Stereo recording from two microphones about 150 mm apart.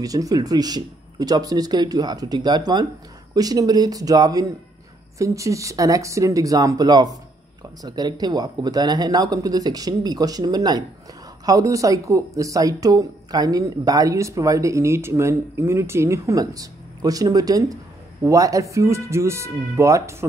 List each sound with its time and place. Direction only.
0.0 s speech: 25° right (ahead or behind)